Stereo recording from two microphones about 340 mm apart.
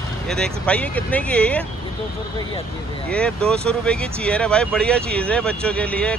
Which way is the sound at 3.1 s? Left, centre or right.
Centre.